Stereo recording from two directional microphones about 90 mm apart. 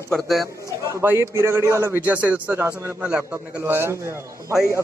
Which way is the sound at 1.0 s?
30° right (ahead or behind).